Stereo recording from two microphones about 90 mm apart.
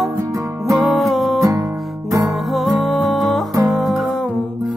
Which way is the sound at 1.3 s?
35° right (ahead or behind).